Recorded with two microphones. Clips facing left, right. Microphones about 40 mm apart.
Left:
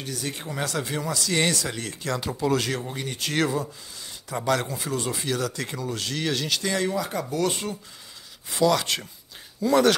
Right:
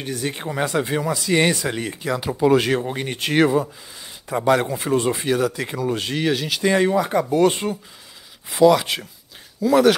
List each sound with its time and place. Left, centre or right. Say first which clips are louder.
0.0 s speech: right 6 dB; right
0.5 s speech: right 7 dB; right
4.7 s speech: right 8 dB; right; by 5.9 s centre
5.9 s speech: right 8 dB; right
6.2 s speech: right 4 dB; centre
6.6 s speech: right 8 dB; right
8.5 s speech: right 7 dB; centre